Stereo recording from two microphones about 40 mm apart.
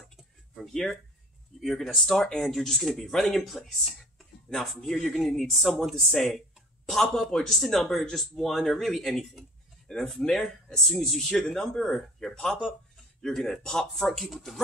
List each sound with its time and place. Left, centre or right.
0.1 s a sound: centre
1.6 s a man's voice: centre
10.8 s a man's voice: centre
12.4 s a man's voice: centre